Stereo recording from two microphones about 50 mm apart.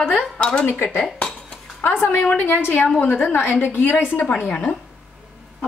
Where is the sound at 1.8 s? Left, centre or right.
Left.